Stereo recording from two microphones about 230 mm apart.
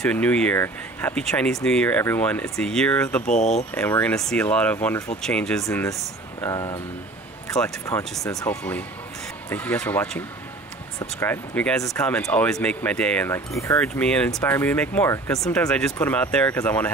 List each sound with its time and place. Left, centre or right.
0.0 s speech: centre
5.7 s speech: centre